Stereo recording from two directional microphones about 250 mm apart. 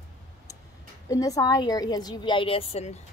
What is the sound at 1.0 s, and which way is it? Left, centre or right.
A woman's voice, centre.